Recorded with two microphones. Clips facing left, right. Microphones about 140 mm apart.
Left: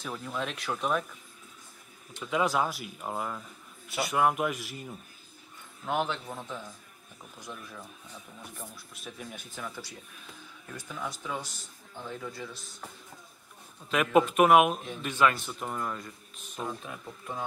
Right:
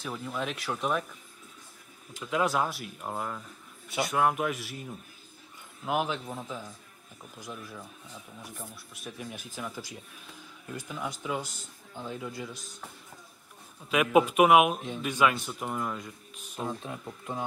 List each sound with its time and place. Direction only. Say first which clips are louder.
0.0 s speech: right 1 dB; centre (ahead or behind)
2.1 s speech: even; centre (ahead or behind)
13.8 s speech: right 1 dB; 5° right (ahead or behind)
16.6 s speech: right 2 dB; 30° right (ahead or behind)
17.0 s speech: right 2 dB; 15° right (ahead or behind)